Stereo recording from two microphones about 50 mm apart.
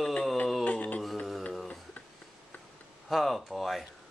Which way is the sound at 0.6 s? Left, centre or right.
Left.